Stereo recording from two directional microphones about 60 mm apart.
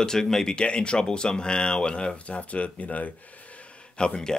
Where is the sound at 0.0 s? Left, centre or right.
Centre; by 3.1 s left.